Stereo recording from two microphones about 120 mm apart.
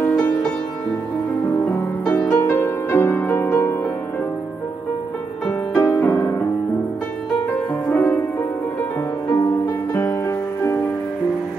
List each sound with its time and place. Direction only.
0.1 s music: 10° left (ahead or behind)
2.0 s music: 15° left (ahead or behind)
5.8 s music: 20° left (ahead or behind)
7.5 s music: 20° left (ahead or behind)
9.3 s music: 30° left (ahead or behind)